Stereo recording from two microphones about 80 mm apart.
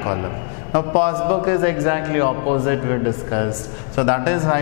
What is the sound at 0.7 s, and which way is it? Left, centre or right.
A man's voice, centre.